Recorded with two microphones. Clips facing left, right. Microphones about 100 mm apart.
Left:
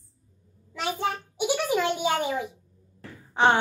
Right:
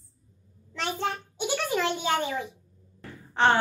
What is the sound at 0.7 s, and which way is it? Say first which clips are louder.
A child's voice: left 2 dB; 10° left (ahead or behind).